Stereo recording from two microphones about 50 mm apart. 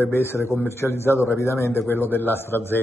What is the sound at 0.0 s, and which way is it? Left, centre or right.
Speech, left.